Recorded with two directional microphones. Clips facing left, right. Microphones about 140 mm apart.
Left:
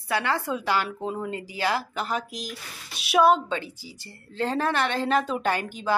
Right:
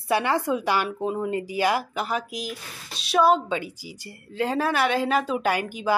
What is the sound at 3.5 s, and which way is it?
A woman's voice, 10° right (ahead or behind).